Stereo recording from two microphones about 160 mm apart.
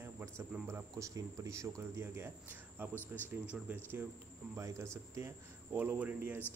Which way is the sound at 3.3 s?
10° right (ahead or behind).